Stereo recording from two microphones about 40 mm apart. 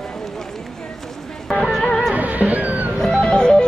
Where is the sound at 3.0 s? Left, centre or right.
Centre.